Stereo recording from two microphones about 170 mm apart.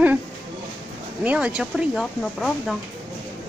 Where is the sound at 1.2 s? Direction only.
5° right (ahead or behind).